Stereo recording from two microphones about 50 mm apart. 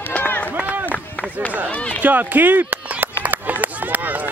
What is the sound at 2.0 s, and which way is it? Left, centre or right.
Speech, right.